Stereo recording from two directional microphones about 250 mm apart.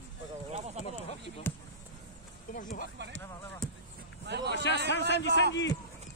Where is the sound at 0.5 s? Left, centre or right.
Right.